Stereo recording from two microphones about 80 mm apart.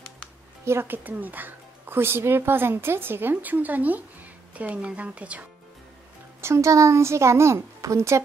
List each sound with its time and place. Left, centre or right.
0.7 s speech: right
6.4 s a woman's voice: right